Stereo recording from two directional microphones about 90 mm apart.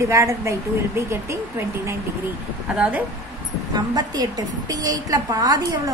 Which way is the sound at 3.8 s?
45° right (ahead or behind).